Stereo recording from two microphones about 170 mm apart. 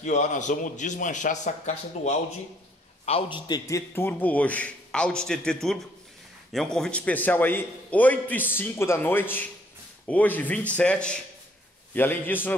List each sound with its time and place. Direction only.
0.0 s a man's voice: 45° left (ahead or behind)
3.1 s a man's voice: 30° left (ahead or behind); by 12.5 s 10° left (ahead or behind)